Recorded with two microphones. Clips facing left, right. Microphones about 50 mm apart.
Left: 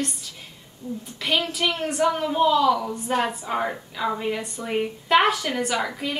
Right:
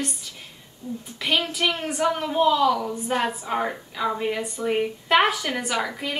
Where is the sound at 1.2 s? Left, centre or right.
Centre.